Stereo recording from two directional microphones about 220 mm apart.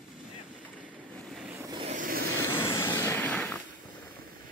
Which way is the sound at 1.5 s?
15° right (ahead or behind).